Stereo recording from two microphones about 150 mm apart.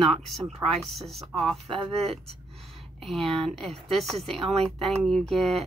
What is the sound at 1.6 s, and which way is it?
Speech, 40° right (ahead or behind).